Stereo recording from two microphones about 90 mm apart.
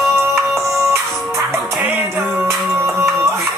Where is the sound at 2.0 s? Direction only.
20° right (ahead or behind).